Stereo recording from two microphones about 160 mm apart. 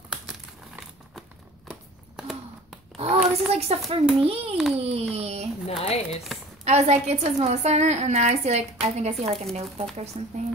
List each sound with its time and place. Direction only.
0.1 s crumpling: 5° right (ahead or behind)
1.7 s a sound: centre (ahead or behind)
3.0 s a child's voice: 40° right (ahead or behind)
5.7 s speech: 40° left (ahead or behind)
6.6 s a woman's voice: 45° right (ahead or behind)